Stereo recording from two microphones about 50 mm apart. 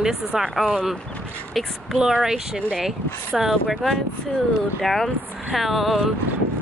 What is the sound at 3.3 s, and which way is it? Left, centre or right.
Speech, centre.